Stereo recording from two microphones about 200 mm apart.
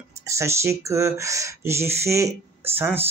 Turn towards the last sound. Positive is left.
turn(degrees=-10)  # may be behind; listen again after turning